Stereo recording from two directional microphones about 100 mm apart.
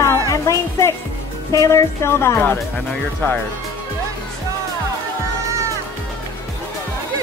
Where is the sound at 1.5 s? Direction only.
30° left (ahead or behind).